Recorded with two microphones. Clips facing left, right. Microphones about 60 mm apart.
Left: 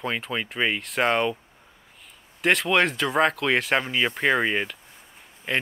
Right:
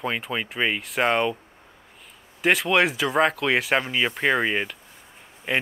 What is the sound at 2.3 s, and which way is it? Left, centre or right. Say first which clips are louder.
Speech: right 1 dB; centre.